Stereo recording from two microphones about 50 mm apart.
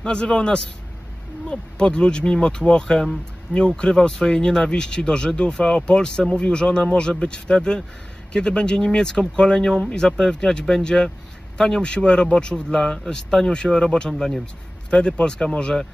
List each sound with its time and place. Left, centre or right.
0.0 s speech: centre
14.4 s speech: centre